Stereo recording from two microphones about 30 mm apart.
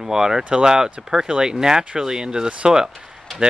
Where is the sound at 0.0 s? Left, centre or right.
Right.